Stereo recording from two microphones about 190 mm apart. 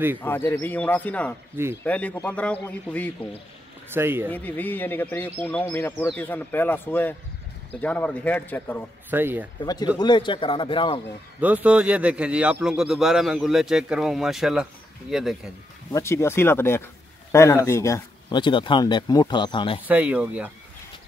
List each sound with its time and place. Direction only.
0.2 s speech: 10° left (ahead or behind)
3.9 s speech: 10° right (ahead or behind)
4.3 s speech: 10° left (ahead or behind)
9.1 s speech: 10° right (ahead or behind)
9.9 s speech: 25° left (ahead or behind)
11.4 s speech: 5° right (ahead or behind)
15.9 s speech: 15° left (ahead or behind)
19.9 s speech: 10° right (ahead or behind)